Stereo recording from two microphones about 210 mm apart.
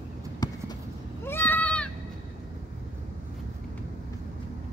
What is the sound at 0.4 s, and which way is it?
Clip-clop, 20° left (ahead or behind).